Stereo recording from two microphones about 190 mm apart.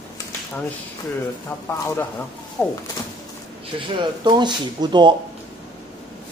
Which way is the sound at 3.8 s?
25° right (ahead or behind).